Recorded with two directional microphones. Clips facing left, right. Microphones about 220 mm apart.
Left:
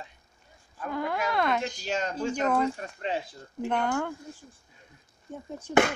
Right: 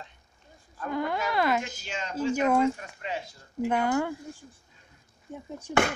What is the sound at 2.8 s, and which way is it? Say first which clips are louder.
Speech: left 4 dB; 30° left (ahead or behind).